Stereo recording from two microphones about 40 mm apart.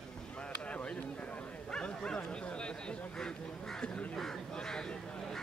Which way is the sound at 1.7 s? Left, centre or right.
Left.